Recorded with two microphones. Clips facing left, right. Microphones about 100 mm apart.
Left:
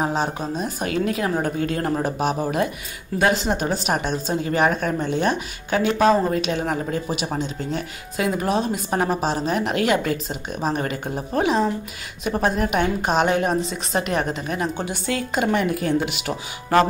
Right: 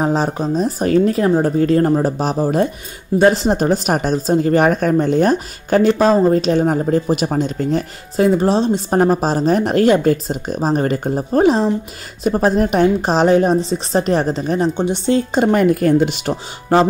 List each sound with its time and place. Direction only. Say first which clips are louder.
0.0 s a woman's voice: right 6 dB; 35° right (ahead or behind)
8.4 s a woman's voice: right 7 dB; 30° right (ahead or behind)
15.6 s a woman's voice: right 8 dB; 50° right (ahead or behind)